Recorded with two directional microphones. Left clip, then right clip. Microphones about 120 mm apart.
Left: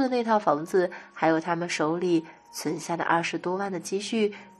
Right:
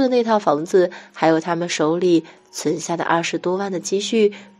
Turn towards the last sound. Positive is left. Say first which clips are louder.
# right 9 dB
turn(degrees=-30)  # may be behind; listen again after turning